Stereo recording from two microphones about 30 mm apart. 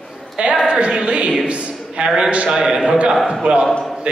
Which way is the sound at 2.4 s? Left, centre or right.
Centre.